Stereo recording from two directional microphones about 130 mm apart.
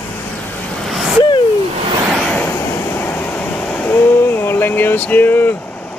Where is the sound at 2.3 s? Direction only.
15° left (ahead or behind).